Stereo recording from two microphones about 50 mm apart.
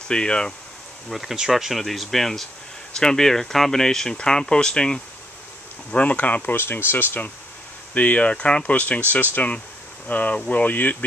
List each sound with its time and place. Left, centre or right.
0.1 s speech: centre
1.3 s speech: centre
5.9 s speech: left
6.5 s speech: left
7.9 s speech: left